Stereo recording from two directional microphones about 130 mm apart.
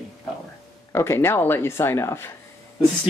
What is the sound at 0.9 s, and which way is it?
Speech, 20° left (ahead or behind).